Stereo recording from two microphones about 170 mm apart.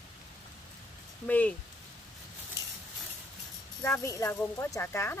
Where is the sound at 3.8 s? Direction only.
15° left (ahead or behind).